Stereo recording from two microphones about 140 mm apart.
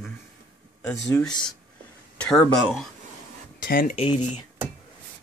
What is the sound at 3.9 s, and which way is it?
Speech, 40° left (ahead or behind).